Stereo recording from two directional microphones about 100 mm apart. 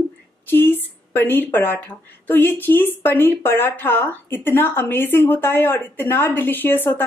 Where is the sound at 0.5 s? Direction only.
20° left (ahead or behind).